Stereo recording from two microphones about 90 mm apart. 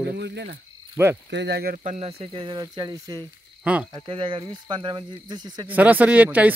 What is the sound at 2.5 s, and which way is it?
Speech, 50° right (ahead or behind).